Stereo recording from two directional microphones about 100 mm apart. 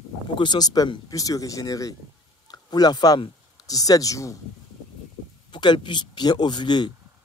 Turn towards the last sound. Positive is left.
turn(degrees=45)  # may be behind; listen again after turning